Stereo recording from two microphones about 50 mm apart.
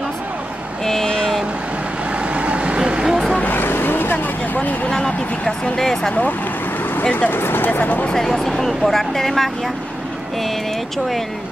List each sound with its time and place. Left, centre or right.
0.8 s vehicle: centre
2.1 s vehicle: right
3.4 s vehicle: left
4.6 s speech: left
4.9 s speech: centre
7.0 s speech: left
7.3 s speech: left
8.1 s speech: centre